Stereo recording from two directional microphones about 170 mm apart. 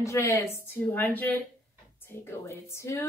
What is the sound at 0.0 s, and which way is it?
A woman's voice, 15° left (ahead or behind).